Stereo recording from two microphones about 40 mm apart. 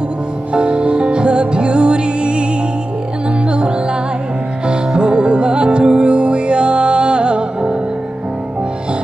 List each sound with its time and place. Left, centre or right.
0.5 s music: right
3.4 s music: right